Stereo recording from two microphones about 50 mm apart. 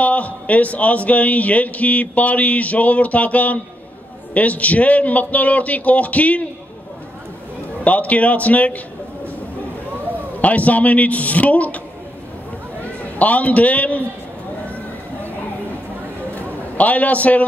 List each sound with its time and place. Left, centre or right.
0.0 s a man's voice: left
7.8 s a man's voice: left
10.4 s a man's voice: left
13.2 s a man's voice: left
16.3 s a sound: left